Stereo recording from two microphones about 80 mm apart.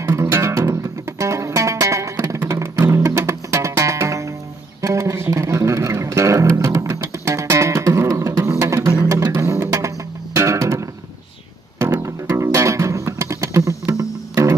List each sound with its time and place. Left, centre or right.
0.0 s music: right